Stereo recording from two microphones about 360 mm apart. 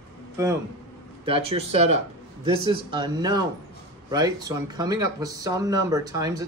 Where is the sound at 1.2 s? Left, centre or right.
Centre.